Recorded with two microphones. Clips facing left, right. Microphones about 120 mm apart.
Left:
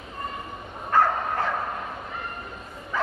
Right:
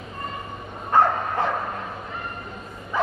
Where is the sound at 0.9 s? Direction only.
20° right (ahead or behind).